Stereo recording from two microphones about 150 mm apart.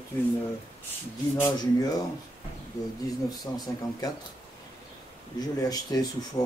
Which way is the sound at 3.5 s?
20° left (ahead or behind).